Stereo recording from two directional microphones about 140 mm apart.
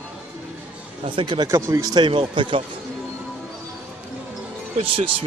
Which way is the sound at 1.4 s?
20° right (ahead or behind).